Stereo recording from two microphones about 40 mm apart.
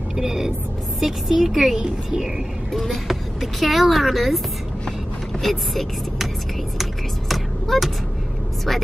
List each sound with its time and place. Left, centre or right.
0.1 s music: centre
0.9 s speech: centre
2.7 s speech: centre
5.4 s speech: centre
7.7 s speech: centre